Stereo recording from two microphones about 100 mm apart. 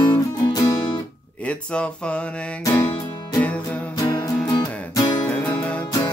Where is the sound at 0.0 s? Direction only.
40° left (ahead or behind).